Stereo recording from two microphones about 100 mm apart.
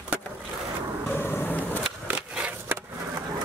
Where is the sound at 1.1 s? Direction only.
20° left (ahead or behind).